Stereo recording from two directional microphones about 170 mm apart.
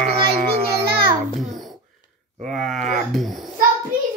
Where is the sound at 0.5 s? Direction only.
65° right (ahead or behind).